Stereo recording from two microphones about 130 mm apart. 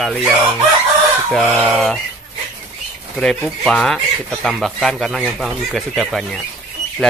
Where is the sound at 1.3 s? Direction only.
5° left (ahead or behind).